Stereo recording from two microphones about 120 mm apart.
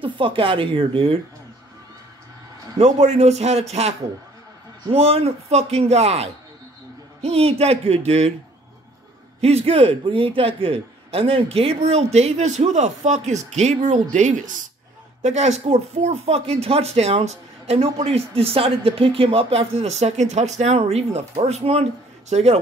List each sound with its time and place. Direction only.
0.0 s speech: 45° right (ahead or behind)
2.8 s a man's voice: 70° right (ahead or behind)
4.9 s a man's voice: 55° right (ahead or behind)
9.4 s a man's voice: 55° right (ahead or behind); by 14.6 s 85° right
15.2 s a man's voice: 70° right (ahead or behind)